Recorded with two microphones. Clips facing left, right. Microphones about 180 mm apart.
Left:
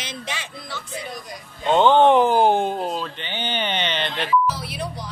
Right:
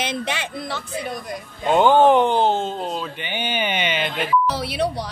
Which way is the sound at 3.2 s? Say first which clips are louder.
Right 2 dB; 10° right (ahead or behind).